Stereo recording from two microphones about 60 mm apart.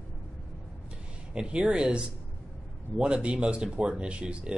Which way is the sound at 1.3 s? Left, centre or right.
Centre.